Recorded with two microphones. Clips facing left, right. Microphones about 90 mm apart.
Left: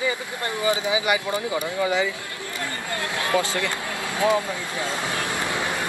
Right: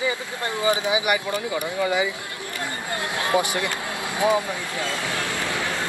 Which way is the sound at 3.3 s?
20° right (ahead or behind).